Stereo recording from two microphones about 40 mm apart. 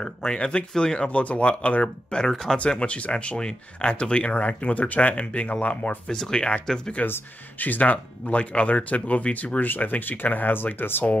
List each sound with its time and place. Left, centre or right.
0.0 s speech: centre; by 1.9 s left
2.0 s speech: left
6.0 s speech: centre
7.0 s speech: left